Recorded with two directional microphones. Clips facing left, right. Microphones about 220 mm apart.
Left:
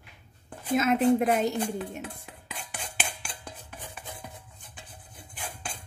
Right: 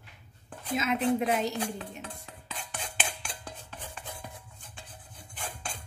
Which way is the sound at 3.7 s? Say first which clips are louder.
Left 1 dB; 15° left (ahead or behind).